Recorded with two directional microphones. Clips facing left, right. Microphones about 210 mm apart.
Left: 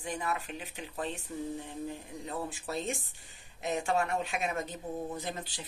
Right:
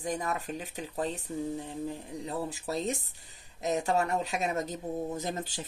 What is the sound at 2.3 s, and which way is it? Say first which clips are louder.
Speech: right 3 dB; 40° right (ahead or behind).